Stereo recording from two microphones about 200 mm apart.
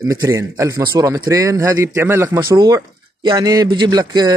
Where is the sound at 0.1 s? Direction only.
15° right (ahead or behind).